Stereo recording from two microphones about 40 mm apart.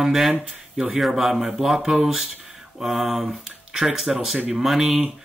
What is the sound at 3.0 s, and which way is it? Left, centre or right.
Speech, centre.